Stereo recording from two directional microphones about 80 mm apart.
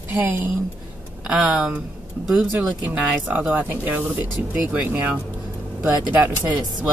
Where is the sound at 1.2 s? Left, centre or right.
Centre.